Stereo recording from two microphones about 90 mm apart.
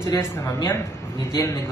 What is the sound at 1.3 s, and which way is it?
Speech, 40° left (ahead or behind).